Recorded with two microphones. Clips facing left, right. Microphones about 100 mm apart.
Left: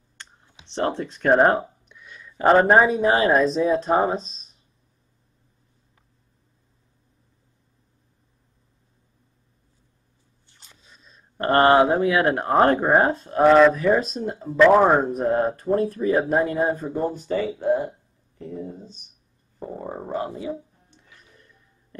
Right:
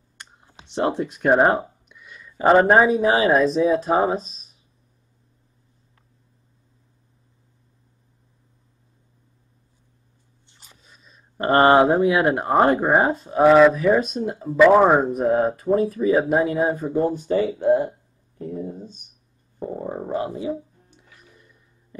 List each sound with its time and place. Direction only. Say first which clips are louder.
0.7 s speech: right 2 dB; 15° right (ahead or behind)
10.6 s a sound: right 1 dB; 5° right (ahead or behind)
12.1 s speech: right 1 dB; 5° right (ahead or behind)
18.6 s a sound: right 2 dB; 20° right (ahead or behind)
19.6 s speech: right 4 dB; 5° right (ahead or behind)
20.9 s music: left 1 dB; 15° right (ahead or behind)